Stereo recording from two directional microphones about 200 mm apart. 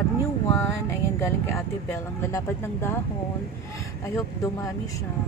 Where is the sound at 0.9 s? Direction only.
15° left (ahead or behind).